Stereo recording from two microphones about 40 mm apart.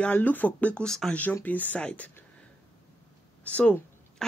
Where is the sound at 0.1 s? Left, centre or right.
Left.